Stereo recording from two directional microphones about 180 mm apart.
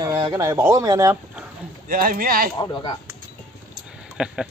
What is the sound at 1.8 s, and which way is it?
Speech, 55° right (ahead or behind).